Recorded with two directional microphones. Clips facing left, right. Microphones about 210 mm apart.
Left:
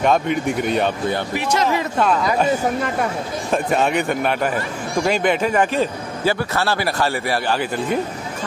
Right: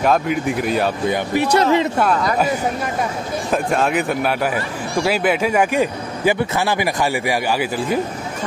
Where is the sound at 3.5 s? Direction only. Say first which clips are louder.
Even; centre (ahead or behind).